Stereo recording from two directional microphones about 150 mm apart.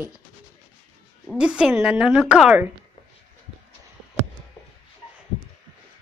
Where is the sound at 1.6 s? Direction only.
5° right (ahead or behind).